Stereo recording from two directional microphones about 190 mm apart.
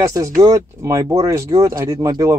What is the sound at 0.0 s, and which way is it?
Speech, 15° right (ahead or behind).